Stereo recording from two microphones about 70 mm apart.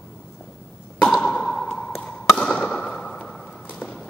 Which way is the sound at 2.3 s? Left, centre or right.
Centre.